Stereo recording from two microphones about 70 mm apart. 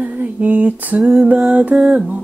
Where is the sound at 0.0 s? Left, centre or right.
Right.